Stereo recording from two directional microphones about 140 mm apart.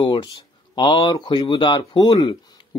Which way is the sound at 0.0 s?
35° left (ahead or behind).